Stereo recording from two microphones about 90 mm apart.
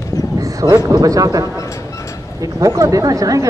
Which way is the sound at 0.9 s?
40° right (ahead or behind).